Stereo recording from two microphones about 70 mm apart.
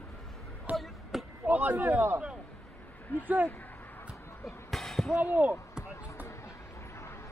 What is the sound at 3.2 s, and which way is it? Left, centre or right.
Speech, right.